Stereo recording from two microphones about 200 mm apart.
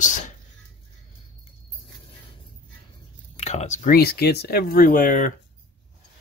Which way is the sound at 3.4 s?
35° left (ahead or behind).